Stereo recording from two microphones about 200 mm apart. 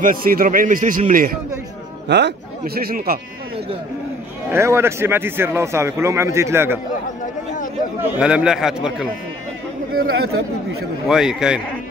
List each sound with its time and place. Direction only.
0.0 s a man's voice: 45° right (ahead or behind)
2.0 s a man's voice: 60° right (ahead or behind)
4.5 s a man's voice: 15° right (ahead or behind)
8.1 s a man's voice: 5° right (ahead or behind)
9.9 s a man's voice: 50° right (ahead or behind)
11.1 s a man's voice: centre (ahead or behind)